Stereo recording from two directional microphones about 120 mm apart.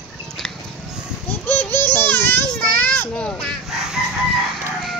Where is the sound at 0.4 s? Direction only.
5° left (ahead or behind).